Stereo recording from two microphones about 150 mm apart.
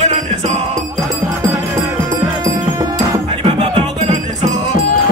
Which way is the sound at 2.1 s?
25° right (ahead or behind).